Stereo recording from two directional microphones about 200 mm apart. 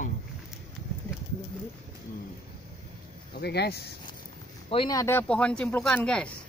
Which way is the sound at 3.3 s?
55° left (ahead or behind).